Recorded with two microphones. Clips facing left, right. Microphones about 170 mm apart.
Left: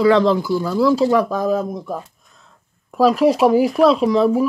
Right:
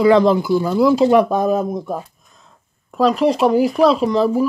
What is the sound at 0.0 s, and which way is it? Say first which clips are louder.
Speech: right 2 dB; 10° right (ahead or behind).